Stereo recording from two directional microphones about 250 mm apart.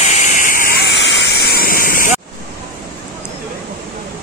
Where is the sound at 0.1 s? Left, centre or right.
Left.